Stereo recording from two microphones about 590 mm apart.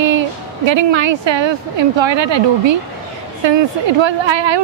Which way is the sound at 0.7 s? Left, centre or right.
Right.